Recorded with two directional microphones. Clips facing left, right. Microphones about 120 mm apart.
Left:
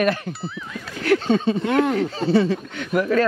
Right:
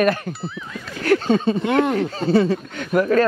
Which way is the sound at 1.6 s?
20° right (ahead or behind).